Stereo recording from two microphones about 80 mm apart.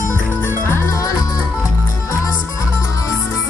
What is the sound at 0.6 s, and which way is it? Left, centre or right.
Music, left.